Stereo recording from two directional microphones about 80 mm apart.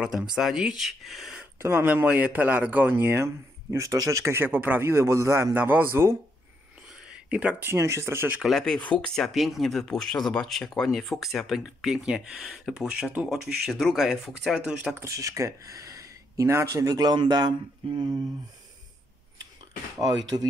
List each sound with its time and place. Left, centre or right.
0.0 s speech: centre
1.6 s speech: right
2.0 s speech: centre
3.3 s speech: right
4.9 s speech: right
5.5 s speech: right
7.2 s speech: centre
7.7 s speech: right
8.4 s speech: centre
8.6 s speech: centre
9.1 s speech: centre
15.0 s speech: right
16.8 s speech: right
20.0 s speech: right